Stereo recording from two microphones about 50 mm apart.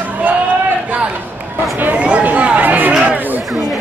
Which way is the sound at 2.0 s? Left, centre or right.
Right.